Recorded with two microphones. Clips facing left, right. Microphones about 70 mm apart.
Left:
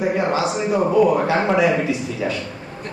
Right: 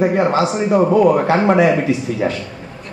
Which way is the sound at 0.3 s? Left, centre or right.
Right.